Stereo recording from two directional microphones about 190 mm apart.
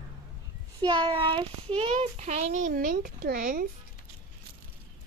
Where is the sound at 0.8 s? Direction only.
25° right (ahead or behind); by 3.7 s 45° right (ahead or behind).